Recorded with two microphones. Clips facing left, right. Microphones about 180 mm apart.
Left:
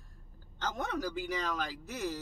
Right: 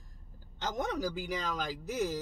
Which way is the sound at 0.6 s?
15° right (ahead or behind).